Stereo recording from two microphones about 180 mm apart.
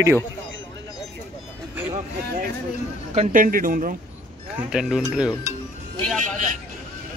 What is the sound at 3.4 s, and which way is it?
Speech, 50° right (ahead or behind).